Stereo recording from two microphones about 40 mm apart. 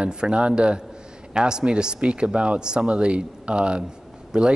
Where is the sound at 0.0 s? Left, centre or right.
Right.